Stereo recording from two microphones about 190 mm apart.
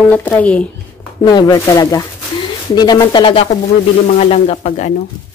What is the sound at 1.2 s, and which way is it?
Speech, 20° left (ahead or behind).